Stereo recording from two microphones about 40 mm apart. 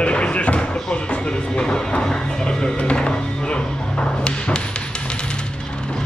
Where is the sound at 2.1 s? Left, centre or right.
Centre.